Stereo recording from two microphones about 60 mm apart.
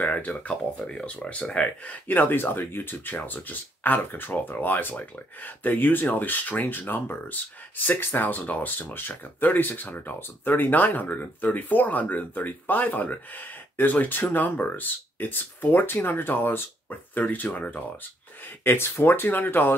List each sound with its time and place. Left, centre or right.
0.0 s speech: left
18.6 s speech: left